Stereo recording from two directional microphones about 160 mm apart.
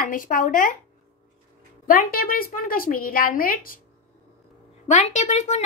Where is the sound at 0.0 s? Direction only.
55° left (ahead or behind).